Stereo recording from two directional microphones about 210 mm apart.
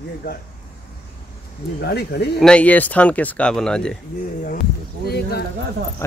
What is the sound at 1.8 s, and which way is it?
Speech, 50° left (ahead or behind).